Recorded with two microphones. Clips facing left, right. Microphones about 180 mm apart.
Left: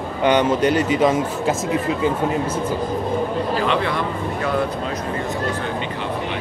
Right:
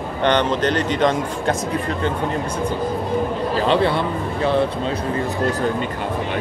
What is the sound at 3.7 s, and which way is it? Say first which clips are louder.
Speech: right 4 dB; 30° right (ahead or behind).